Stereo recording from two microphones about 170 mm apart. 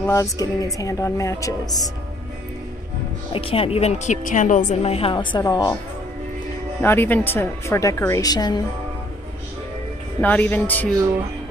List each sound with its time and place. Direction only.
0.0 s speech: 20° left (ahead or behind)
3.3 s a woman's voice: 35° left (ahead or behind)
6.8 s a woman's voice: 10° left (ahead or behind)
10.2 s a woman's voice: 10° left (ahead or behind)